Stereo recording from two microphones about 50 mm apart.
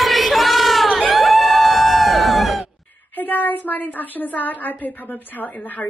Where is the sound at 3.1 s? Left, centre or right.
Left.